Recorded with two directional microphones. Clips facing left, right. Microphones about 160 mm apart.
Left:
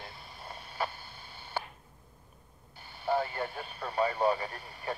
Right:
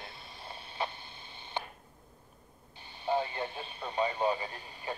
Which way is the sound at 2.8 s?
20° right (ahead or behind).